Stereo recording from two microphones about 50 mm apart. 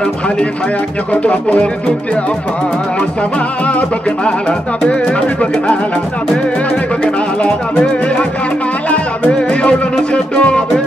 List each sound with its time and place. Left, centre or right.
1.1 s music: left
3.6 s speech: left
7.0 s music: centre